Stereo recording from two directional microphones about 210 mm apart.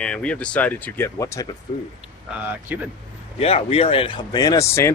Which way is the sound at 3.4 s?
30° left (ahead or behind).